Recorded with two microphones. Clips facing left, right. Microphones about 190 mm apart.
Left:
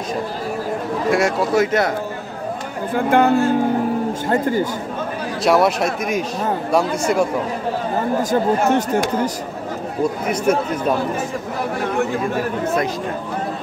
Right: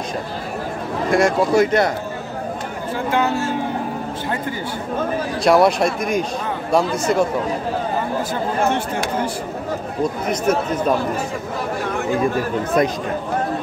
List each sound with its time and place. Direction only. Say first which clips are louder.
1.1 s speech: right 3 dB; 5° left (ahead or behind)
2.9 s speech: left 5 dB; 55° left (ahead or behind)
4.3 s speech: left 9 dB; 45° left (ahead or behind)
5.4 s speech: right 1 dB; 5° left (ahead or behind)
8.2 s speech: left 6 dB; 45° left (ahead or behind)
10.2 s speech: left 1 dB; 10° left (ahead or behind)